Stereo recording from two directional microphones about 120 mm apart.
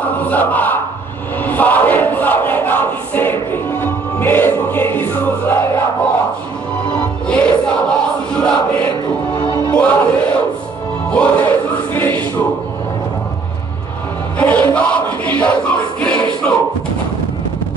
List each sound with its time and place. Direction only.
0.0 s a sound: 15° left (ahead or behind)
1.4 s battle cry: 15° left (ahead or behind)
7.2 s music: 5° left (ahead or behind)
8.4 s chant: 5° left (ahead or behind)
9.8 s music: 10° left (ahead or behind)
11.1 s choir: 10° left (ahead or behind)
14.4 s a sound: 10° left (ahead or behind)